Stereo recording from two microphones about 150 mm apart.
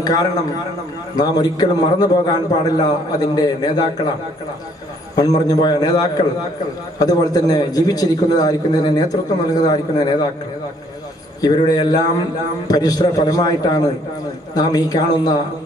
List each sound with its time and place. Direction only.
0.0 s a man's voice: 25° left (ahead or behind)
5.1 s a man's voice: 25° left (ahead or behind)
11.4 s a man's voice: 25° left (ahead or behind)